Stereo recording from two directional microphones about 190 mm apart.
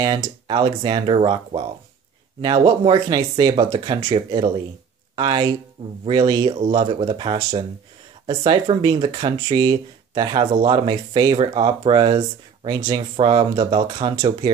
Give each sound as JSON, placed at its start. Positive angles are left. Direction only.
{"t": 0.0, "sound": "speech", "side_deg": -25}